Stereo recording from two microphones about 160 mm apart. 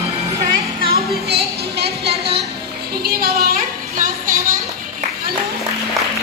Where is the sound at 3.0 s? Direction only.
70° right (ahead or behind).